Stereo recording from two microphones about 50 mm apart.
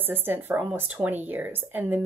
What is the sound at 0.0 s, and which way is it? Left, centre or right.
Speech, right.